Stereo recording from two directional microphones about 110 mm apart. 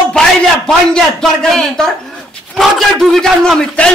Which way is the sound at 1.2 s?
5° left (ahead or behind).